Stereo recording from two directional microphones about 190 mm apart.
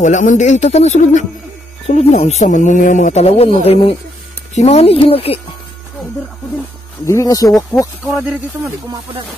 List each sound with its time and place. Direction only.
0.0 s speech: 40° left (ahead or behind)
7.1 s speech: 15° left (ahead or behind)
8.2 s speech: 5° right (ahead or behind)